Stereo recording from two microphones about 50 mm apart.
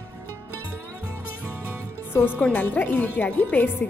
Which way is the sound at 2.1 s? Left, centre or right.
Left.